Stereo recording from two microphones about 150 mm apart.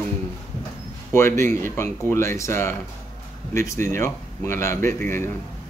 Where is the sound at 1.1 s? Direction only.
15° left (ahead or behind).